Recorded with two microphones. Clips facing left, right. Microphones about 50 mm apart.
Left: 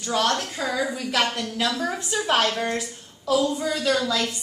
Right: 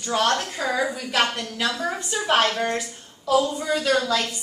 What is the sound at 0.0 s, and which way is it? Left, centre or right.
Speech, centre.